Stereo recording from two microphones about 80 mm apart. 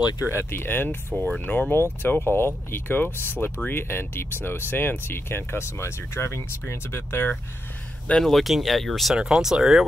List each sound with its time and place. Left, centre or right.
0.2 s speech: left
1.1 s speech: centre
1.4 s speech: left
8.1 s speech: centre
9.1 s speech: centre